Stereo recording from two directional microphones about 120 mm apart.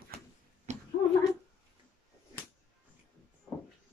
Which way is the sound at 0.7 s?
70° right (ahead or behind).